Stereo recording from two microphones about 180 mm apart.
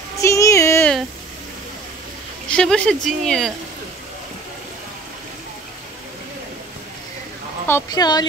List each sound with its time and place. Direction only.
0.2 s a sound: 15° left (ahead or behind)
2.5 s speech: 5° left (ahead or behind)
7.6 s a woman's voice: 15° left (ahead or behind)